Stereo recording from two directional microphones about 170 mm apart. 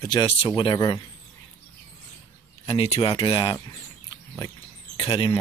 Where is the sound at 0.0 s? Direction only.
25° left (ahead or behind).